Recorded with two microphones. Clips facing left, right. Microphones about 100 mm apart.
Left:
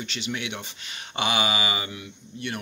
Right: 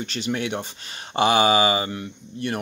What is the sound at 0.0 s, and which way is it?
Speech, 40° right (ahead or behind).